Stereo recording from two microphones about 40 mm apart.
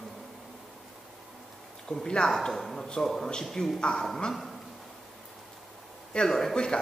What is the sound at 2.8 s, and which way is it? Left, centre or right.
Speech, left.